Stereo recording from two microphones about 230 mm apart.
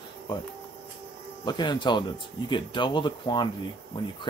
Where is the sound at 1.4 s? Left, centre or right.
Centre.